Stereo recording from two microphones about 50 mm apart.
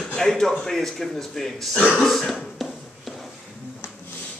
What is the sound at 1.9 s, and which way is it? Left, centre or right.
Throat clearing, centre.